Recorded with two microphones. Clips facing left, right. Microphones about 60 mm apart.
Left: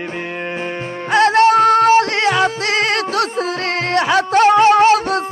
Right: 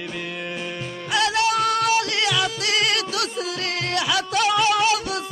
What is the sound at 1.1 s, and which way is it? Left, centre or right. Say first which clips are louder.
Music: left 10 dB; left.